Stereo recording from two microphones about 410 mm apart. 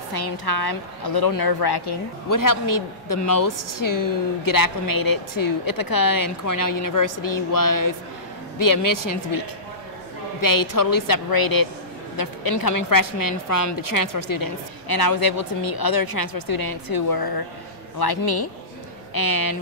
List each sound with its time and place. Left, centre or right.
0.1 s a woman's voice: left
2.2 s a woman's voice: left